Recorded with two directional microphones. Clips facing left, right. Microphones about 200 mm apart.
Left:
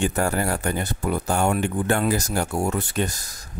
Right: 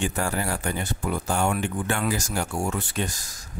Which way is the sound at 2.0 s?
55° left (ahead or behind).